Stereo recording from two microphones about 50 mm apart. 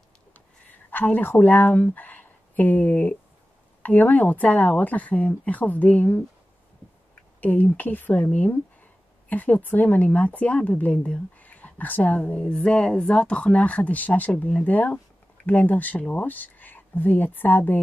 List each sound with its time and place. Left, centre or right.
0.8 s speech: left
7.3 s speech: left
8.2 s speech: left